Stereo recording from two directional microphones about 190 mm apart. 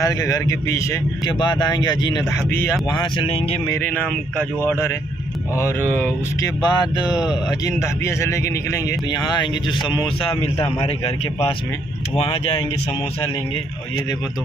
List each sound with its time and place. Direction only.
0.0 s speech: 20° left (ahead or behind)
3.6 s a sound: 10° left (ahead or behind)
6.6 s speech: 20° left (ahead or behind)
12.3 s speech: 30° left (ahead or behind)